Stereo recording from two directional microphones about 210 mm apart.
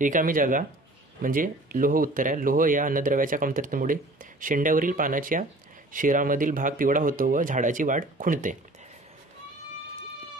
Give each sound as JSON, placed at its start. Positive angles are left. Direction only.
{"t": 0.0, "sound": "speech", "side_deg": -40}